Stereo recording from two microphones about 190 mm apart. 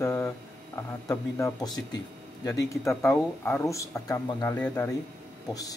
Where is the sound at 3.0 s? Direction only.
15° left (ahead or behind).